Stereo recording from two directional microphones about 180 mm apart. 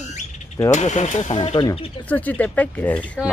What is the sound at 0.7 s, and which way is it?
Speech, 40° left (ahead or behind).